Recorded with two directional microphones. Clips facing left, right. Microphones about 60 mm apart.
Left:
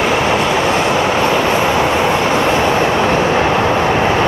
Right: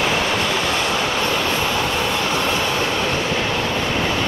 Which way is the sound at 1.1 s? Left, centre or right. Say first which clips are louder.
Left 7 dB; left.